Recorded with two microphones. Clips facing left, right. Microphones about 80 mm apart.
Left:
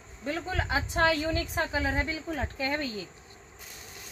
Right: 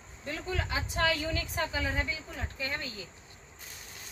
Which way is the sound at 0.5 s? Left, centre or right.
Left.